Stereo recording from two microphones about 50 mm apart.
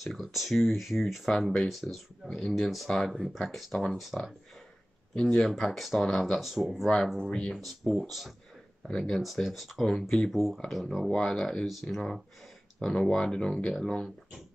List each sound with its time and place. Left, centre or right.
0.0 s speech: centre
4.0 s speech: centre
5.1 s speech: centre
5.7 s speech: centre
6.1 s speech: centre
6.4 s speech: centre
7.2 s speech: centre
7.5 s speech: centre
8.8 s speech: centre
9.2 s speech: centre
9.9 s speech: centre
10.3 s speech: centre
11.1 s speech: centre